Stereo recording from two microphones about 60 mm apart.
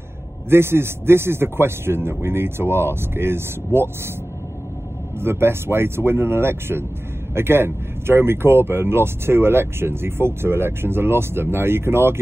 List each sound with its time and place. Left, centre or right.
0.5 s speech: right
5.2 s speech: right